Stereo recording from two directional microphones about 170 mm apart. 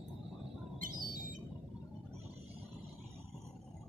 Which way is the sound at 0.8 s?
55° right (ahead or behind).